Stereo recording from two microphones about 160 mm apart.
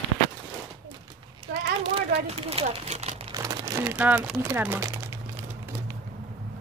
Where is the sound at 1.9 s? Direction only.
40° right (ahead or behind).